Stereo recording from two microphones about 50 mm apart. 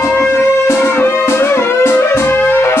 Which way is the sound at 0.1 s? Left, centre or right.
Left.